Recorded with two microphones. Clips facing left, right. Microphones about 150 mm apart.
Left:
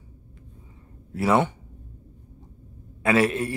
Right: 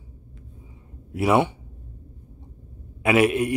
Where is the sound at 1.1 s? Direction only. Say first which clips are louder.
Right 2 dB; 15° right (ahead or behind).